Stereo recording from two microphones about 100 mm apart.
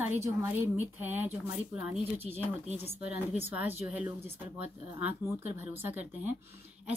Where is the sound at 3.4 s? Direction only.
20° right (ahead or behind).